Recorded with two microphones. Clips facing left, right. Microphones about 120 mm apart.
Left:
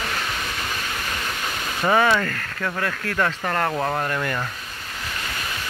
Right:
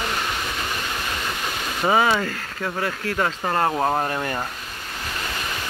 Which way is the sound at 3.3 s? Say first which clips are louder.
Right 2 dB; 25° right (ahead or behind).